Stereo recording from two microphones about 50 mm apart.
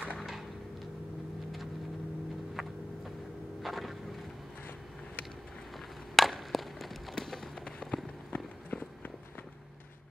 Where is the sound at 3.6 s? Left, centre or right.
Centre.